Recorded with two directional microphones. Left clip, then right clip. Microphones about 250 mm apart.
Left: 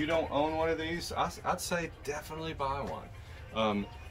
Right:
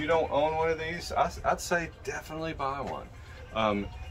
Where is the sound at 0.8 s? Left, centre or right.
Centre.